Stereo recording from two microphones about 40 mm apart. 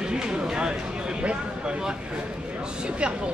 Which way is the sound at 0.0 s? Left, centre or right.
Centre.